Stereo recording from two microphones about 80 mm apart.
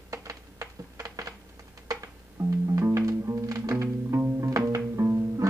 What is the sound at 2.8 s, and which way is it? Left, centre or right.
Music, right.